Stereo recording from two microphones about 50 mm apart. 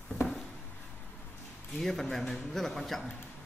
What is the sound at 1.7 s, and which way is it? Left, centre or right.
A man's voice, centre.